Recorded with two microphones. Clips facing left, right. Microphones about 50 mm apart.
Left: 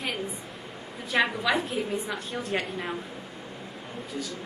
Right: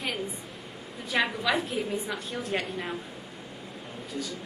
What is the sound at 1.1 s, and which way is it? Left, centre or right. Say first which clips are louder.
A woman's voice: left 2 dB; centre.